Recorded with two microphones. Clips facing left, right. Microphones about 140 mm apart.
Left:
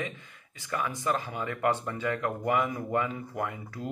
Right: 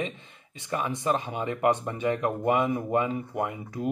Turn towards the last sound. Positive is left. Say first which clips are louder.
# right 4 dB
turn(degrees=-20)  # may be behind; listen again after turning